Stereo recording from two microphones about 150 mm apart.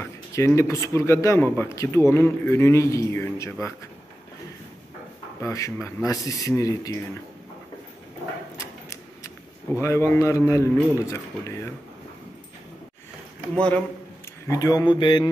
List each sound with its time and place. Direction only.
0.0 s a sound: 20° left (ahead or behind)
0.6 s a man's voice: 20° left (ahead or behind)
5.4 s a man's voice: 20° left (ahead or behind)
9.8 s a man's voice: 20° left (ahead or behind)
14.5 s a man's voice: 25° left (ahead or behind)